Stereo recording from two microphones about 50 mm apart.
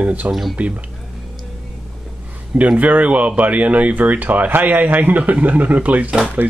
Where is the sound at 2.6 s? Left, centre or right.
Right.